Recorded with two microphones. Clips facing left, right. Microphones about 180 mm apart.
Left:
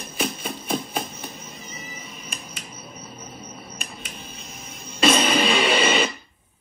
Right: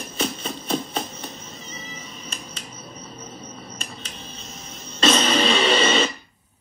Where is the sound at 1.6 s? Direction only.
25° right (ahead or behind).